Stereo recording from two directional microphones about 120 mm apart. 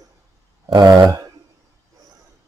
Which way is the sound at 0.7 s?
35° right (ahead or behind).